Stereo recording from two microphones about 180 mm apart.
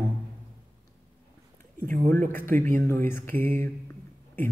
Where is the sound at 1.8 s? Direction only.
50° right (ahead or behind).